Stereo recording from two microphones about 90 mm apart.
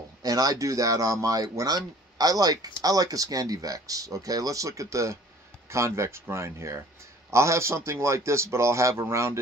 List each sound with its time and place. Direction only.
0.2 s speech: 45° right (ahead or behind)